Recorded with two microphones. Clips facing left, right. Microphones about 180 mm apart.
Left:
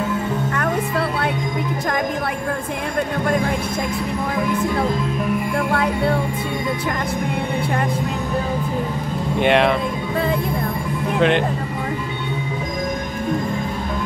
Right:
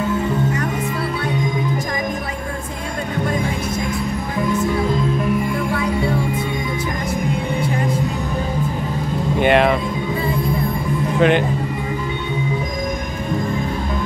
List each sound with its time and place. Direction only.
5.7 s music: 60° left (ahead or behind)
9.4 s music: centre (ahead or behind)
11.1 s music: 5° right (ahead or behind)